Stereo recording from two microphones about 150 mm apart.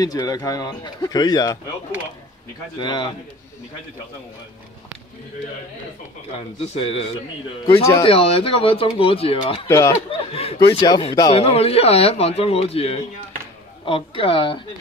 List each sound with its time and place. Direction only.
0.0 s speech: 25° left (ahead or behind)
2.8 s speech: 30° left (ahead or behind)
6.6 s speech: 45° left (ahead or behind)
9.7 s speech: 20° left (ahead or behind)
10.3 s speech: 40° left (ahead or behind)
11.3 s speech: 40° left (ahead or behind)